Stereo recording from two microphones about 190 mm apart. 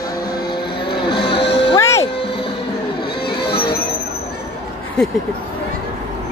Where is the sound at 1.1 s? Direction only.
25° left (ahead or behind).